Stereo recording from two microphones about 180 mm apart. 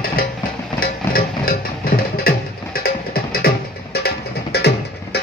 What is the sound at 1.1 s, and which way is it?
Music, 55° left (ahead or behind).